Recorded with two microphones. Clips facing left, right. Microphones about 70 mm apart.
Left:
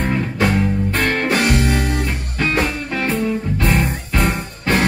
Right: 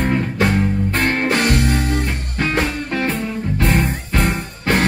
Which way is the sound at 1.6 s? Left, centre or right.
Left.